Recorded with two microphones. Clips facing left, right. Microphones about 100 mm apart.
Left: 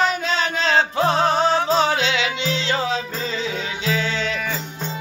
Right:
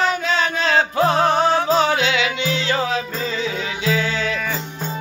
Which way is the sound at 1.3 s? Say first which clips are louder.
Right 1 dB; 40° right (ahead or behind).